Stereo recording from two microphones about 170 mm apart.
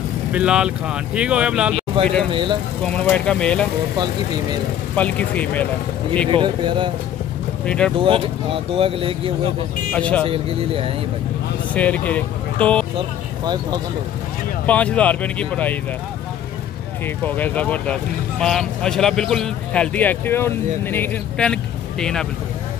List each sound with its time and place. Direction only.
0.3 s speech: 5° right (ahead or behind)
2.8 s speech: 5° left (ahead or behind)
4.9 s speech: 10° left (ahead or behind)
6.3 s speech: 30° right (ahead or behind)
7.6 s speech: 5° left (ahead or behind)
8.0 s speech: 30° right (ahead or behind)
9.9 s speech: 5° left (ahead or behind)
10.2 s speech: 35° right (ahead or behind)
11.7 s speech: 10° left (ahead or behind)
14.7 s speech: 10° left (ahead or behind)
17.0 s speech: 10° left (ahead or behind)